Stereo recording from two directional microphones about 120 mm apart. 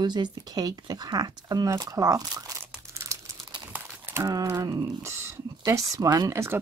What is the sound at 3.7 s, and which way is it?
Horse, 20° right (ahead or behind).